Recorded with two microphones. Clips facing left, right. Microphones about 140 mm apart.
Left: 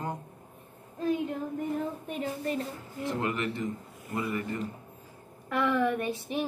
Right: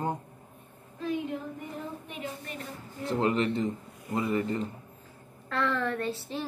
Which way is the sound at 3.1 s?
30° right (ahead or behind).